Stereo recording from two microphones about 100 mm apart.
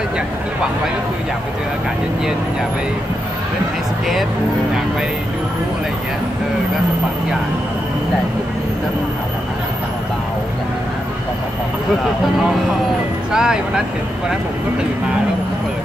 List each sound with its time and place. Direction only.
12.4 s speech: 5° right (ahead or behind)